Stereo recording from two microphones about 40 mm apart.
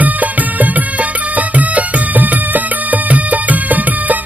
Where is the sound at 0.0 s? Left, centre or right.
Right.